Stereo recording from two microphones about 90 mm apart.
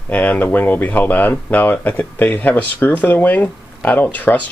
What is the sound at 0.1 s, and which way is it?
Speech, 15° left (ahead or behind).